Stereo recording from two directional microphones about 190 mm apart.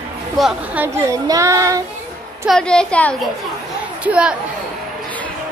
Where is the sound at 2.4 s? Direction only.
Centre (ahead or behind).